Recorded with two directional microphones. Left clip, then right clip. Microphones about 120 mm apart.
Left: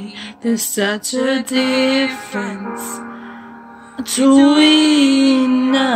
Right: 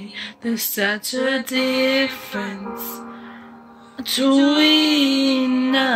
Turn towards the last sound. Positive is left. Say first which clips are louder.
# left 3 dB
turn(degrees=15)  # may be behind; listen again after turning